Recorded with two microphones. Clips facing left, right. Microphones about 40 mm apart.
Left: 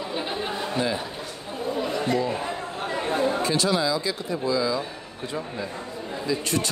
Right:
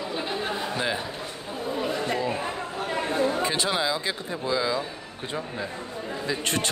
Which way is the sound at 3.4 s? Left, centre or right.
Right.